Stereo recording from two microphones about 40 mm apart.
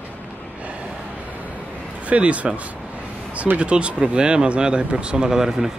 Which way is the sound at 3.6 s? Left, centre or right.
Right.